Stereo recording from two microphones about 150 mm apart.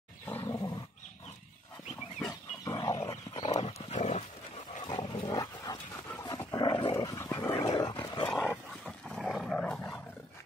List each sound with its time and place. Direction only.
0.3 s roar: 15° left (ahead or behind)
2.1 s dog: 20° left (ahead or behind)
3.4 s dog: 40° left (ahead or behind)
4.8 s dog: 30° left (ahead or behind)
6.5 s roar: 30° left (ahead or behind)
7.3 s dog: 15° left (ahead or behind)
7.6 s dog: 30° left (ahead or behind)
8.5 s dog: 5° left (ahead or behind)